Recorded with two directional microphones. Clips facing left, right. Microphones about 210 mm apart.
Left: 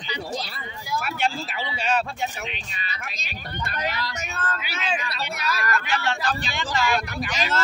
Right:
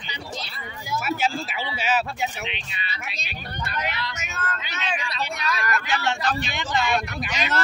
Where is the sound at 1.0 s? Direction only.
5° right (ahead or behind).